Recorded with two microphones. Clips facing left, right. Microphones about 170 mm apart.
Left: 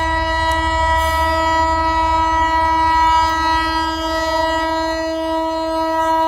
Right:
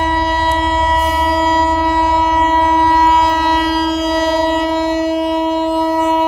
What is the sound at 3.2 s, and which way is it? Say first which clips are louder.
Civil defense siren: right 4 dB; 20° right (ahead or behind).